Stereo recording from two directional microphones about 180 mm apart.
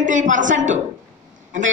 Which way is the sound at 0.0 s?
45° right (ahead or behind).